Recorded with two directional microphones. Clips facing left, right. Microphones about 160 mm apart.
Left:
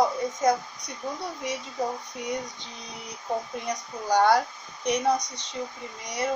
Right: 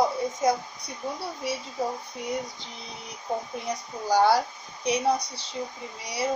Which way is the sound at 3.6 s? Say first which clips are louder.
Even; 5° right (ahead or behind).